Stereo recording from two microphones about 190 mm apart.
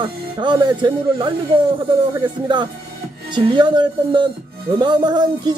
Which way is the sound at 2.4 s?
25° right (ahead or behind).